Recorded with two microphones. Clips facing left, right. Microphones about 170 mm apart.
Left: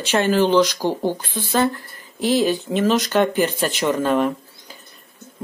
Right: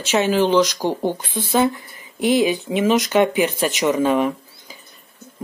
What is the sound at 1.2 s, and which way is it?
Speech, 5° right (ahead or behind).